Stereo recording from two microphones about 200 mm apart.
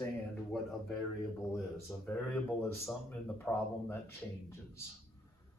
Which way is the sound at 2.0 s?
10° left (ahead or behind).